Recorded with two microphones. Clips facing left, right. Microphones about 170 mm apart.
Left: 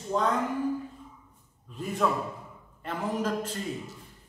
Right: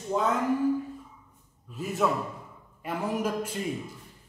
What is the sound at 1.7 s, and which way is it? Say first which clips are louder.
A man's voice: right 1 dB; 5° right (ahead or behind).